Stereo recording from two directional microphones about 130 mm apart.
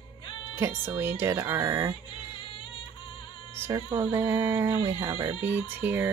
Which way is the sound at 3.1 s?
40° left (ahead or behind).